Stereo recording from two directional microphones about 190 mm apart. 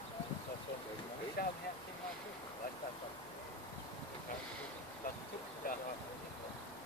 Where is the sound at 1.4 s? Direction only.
55° left (ahead or behind).